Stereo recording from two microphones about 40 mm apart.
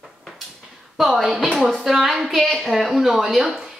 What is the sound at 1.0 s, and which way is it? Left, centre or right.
A woman's voice, centre.